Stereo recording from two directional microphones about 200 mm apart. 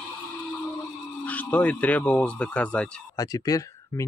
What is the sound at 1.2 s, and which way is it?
Speech, 5° left (ahead or behind).